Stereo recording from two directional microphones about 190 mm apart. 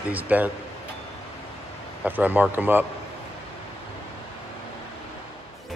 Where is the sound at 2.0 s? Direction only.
10° right (ahead or behind).